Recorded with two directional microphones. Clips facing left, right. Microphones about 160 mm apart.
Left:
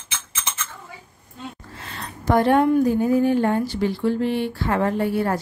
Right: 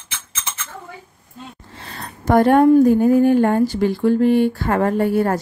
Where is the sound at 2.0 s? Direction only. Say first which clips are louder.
Right 4 dB; 50° right (ahead or behind).